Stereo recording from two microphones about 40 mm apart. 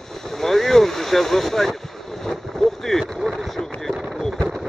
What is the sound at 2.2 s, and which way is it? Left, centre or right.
Boat, centre.